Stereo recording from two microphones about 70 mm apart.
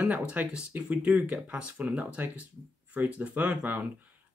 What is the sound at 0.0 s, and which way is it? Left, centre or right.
Speech, centre.